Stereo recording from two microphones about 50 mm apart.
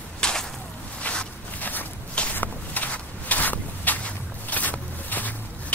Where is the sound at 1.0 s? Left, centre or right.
Left.